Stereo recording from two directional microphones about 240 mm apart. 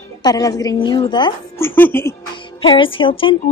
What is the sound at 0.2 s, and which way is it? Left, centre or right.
A woman's voice, centre.